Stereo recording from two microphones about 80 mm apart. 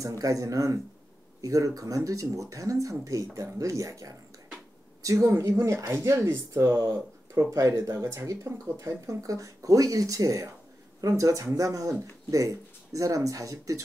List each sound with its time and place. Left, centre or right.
0.0 s speech: right